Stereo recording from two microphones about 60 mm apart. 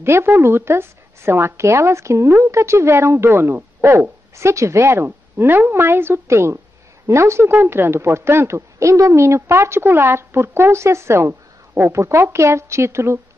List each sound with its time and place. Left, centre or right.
0.0 s speech: right